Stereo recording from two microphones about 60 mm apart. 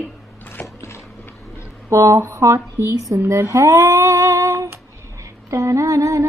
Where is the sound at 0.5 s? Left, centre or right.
Left.